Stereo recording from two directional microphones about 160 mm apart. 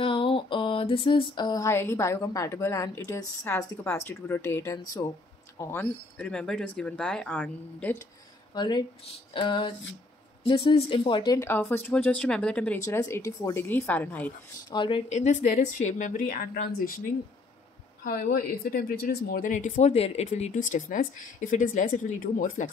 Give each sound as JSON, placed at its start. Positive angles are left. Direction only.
{"t": 0.0, "sound": "a sound", "side_deg": 35}
{"t": 5.6, "sound": "speech", "side_deg": 15}
{"t": 8.5, "sound": "a sound", "side_deg": 25}
{"t": 9.3, "sound": "a woman's voice", "side_deg": 30}
{"t": 11.5, "sound": "speech", "side_deg": 15}
{"t": 12.8, "sound": "speech", "side_deg": 20}
{"t": 14.7, "sound": "speech", "side_deg": 30}
{"t": 15.0, "sound": "a woman's voice", "side_deg": 50}
{"t": 18.0, "sound": "speech", "side_deg": 65}